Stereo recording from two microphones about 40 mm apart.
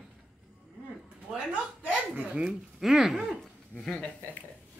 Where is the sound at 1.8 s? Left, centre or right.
Right.